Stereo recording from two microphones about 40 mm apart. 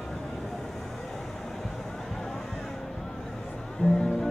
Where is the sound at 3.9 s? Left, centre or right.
Centre.